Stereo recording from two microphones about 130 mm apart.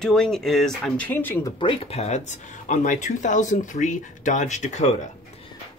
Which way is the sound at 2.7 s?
70° left (ahead or behind).